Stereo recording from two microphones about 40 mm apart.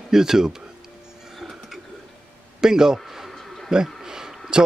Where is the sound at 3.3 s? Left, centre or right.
Centre.